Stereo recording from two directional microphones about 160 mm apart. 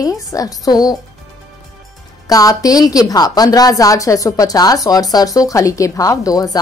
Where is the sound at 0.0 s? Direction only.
20° left (ahead or behind).